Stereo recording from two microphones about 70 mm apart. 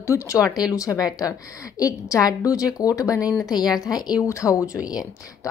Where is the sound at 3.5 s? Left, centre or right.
Left.